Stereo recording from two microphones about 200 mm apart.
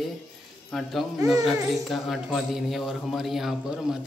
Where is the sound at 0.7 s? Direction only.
Centre (ahead or behind).